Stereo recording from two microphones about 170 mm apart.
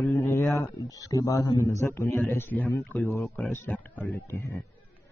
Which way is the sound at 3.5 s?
10° left (ahead or behind).